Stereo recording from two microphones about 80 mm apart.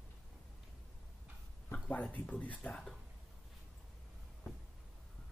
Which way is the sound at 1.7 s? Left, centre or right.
Centre.